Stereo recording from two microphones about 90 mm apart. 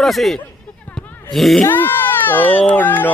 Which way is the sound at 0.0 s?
5° left (ahead or behind).